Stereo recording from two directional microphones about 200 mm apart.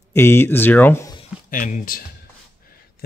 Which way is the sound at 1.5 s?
40° left (ahead or behind).